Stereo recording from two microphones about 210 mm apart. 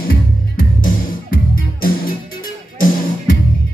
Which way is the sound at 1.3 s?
45° left (ahead or behind).